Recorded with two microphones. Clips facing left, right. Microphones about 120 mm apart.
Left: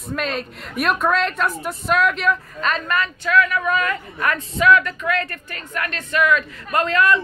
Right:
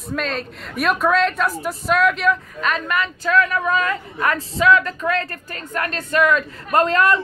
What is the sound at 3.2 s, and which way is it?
Speech, 35° right (ahead or behind).